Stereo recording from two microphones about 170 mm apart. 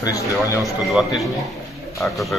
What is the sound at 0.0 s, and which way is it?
Speech, 20° left (ahead or behind).